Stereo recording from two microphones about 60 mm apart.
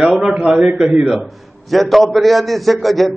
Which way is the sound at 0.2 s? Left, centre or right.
Centre.